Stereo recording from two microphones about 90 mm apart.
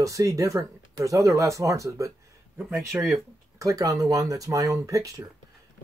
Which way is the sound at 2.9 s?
25° right (ahead or behind).